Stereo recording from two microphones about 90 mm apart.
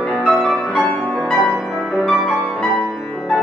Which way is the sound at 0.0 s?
10° left (ahead or behind).